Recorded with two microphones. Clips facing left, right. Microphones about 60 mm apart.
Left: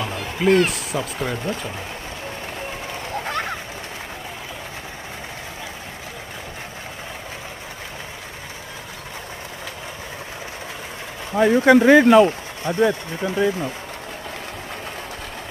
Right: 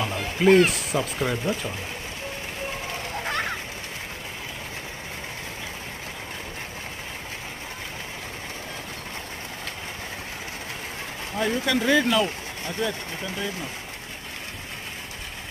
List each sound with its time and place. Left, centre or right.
0.0 s speech: centre
11.3 s speech: left